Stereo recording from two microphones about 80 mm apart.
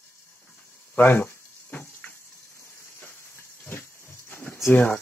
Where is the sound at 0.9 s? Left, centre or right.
Left.